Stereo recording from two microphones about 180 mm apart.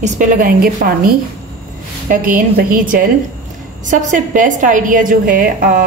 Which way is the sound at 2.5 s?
50° right (ahead or behind).